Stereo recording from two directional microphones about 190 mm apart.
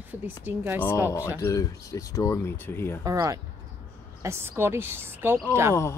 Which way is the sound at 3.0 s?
15° right (ahead or behind).